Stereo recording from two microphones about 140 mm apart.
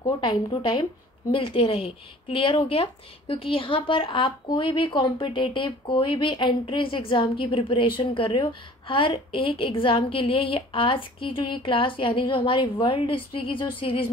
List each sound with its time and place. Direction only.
0.0 s speech: 30° left (ahead or behind)